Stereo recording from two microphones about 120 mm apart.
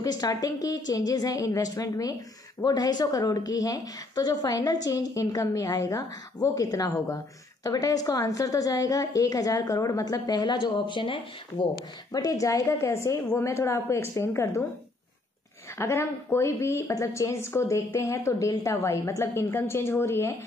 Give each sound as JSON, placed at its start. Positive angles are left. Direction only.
{"t": 0.0, "sound": "a woman's voice", "side_deg": 30}
{"t": 11.7, "sound": "speech", "side_deg": 30}
{"t": 15.8, "sound": "speech", "side_deg": 20}